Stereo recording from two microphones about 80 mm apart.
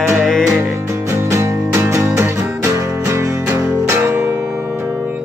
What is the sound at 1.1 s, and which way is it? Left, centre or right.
Music, right.